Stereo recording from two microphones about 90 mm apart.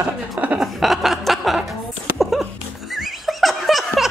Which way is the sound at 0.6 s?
Centre (ahead or behind).